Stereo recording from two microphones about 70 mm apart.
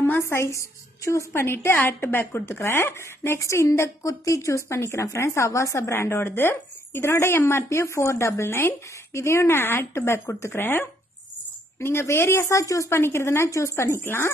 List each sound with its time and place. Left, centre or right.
0.2 s a woman's voice: left
14.0 s a woman's voice: left